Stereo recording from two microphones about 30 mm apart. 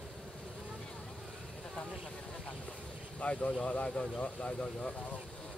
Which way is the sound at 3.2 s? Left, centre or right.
Left.